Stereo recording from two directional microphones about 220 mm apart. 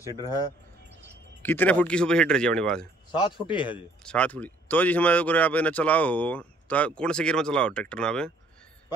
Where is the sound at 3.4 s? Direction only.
20° left (ahead or behind).